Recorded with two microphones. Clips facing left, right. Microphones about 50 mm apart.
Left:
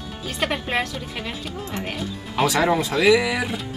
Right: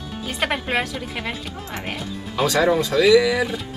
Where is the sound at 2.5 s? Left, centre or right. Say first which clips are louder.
Right 4 dB; left.